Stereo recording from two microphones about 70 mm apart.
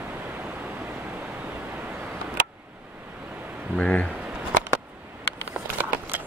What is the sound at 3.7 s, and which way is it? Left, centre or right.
Speech, centre.